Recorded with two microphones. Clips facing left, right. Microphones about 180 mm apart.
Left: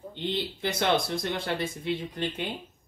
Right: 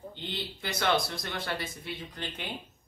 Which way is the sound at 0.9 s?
50° left (ahead or behind).